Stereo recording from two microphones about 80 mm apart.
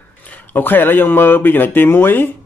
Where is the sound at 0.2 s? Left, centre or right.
Centre.